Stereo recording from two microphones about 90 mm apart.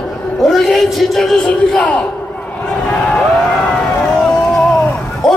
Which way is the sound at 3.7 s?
10° left (ahead or behind).